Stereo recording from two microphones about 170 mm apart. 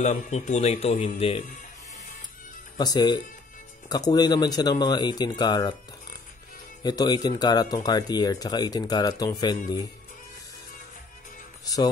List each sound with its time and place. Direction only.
0.0 s a man's voice: 40° left (ahead or behind)
2.8 s speech: 25° left (ahead or behind)
6.8 s speech: 25° left (ahead or behind)
11.6 s speech: 20° left (ahead or behind)